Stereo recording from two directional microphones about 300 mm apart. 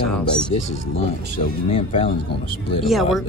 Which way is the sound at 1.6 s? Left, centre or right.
Centre.